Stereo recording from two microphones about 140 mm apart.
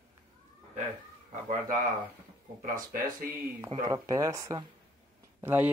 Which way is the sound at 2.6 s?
85° right.